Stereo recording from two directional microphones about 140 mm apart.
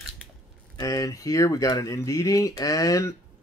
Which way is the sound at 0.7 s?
25° left (ahead or behind).